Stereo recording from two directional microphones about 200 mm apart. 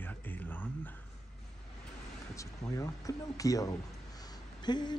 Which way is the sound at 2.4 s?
15° left (ahead or behind).